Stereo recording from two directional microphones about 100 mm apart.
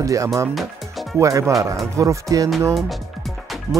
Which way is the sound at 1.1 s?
30° right (ahead or behind).